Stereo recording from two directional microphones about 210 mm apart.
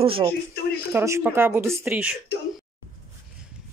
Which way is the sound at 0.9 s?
10° right (ahead or behind).